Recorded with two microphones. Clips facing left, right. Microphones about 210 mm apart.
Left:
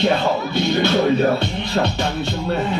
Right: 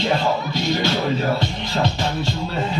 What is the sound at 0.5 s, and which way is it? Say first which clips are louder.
Speech: left 4 dB; 60° left (ahead or behind).